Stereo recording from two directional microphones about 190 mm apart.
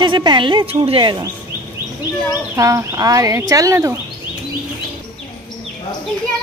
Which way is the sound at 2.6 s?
15° right (ahead or behind).